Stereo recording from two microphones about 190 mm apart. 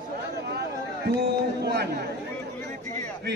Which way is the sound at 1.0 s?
60° right (ahead or behind).